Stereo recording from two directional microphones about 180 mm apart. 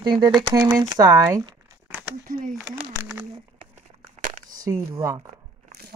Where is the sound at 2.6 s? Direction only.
10° right (ahead or behind).